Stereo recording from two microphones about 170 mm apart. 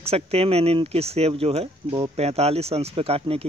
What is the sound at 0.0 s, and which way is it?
Speech, 35° right (ahead or behind).